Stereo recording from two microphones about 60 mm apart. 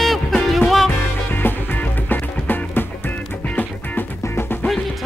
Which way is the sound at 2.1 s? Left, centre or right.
Left.